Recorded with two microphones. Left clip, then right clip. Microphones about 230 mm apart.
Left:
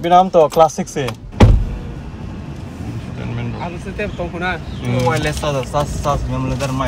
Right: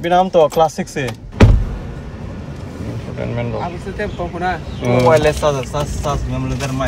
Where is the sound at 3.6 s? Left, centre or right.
Left.